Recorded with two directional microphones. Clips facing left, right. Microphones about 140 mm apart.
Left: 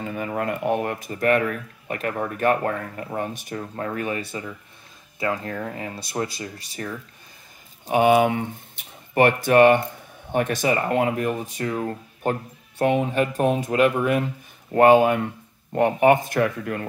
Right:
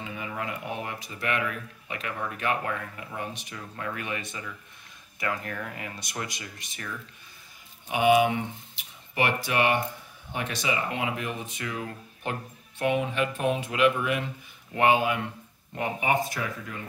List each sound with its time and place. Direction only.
0.0 s speech: 50° left (ahead or behind); by 7.0 s 35° left (ahead or behind)
7.8 s speech: 45° left (ahead or behind); by 16.8 s 60° left (ahead or behind)